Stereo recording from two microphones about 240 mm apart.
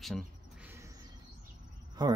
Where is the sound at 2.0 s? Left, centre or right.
Centre.